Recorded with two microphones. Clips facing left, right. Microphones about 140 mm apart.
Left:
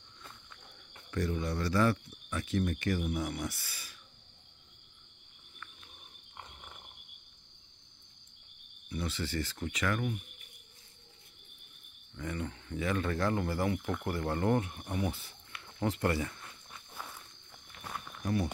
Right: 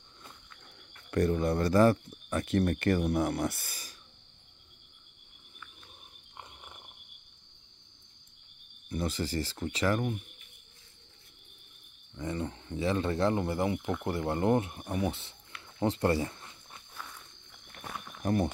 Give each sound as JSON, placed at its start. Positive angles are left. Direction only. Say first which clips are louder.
{"t": 1.1, "sound": "speech", "louder": "right 7 dB", "side_deg": -55}
{"t": 2.4, "sound": "speech", "louder": "right 4 dB", "side_deg": -60}
{"t": 8.8, "sound": "speech", "louder": "right 4 dB", "side_deg": -45}
{"t": 12.2, "sound": "speech", "louder": "right 3 dB", "side_deg": -25}
{"t": 15.8, "sound": "a sound", "louder": "right 4 dB", "side_deg": -30}
{"t": 18.2, "sound": "speech", "louder": "right 4 dB", "side_deg": -45}